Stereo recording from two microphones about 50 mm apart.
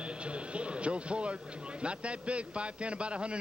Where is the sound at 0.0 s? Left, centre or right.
Right.